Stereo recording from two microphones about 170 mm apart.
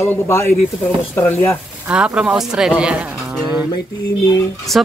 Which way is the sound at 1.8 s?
5° right (ahead or behind).